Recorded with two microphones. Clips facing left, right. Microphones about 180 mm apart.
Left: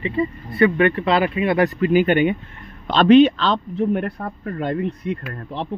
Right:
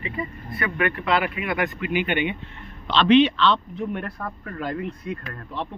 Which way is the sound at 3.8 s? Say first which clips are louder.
Left 7 dB; 30° left (ahead or behind).